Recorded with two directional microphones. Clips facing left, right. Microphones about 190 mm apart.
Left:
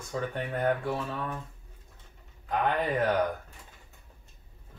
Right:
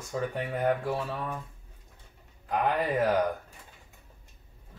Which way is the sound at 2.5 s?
5° right (ahead or behind).